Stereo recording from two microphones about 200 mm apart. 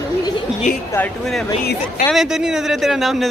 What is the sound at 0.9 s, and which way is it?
Speech, 5° left (ahead or behind).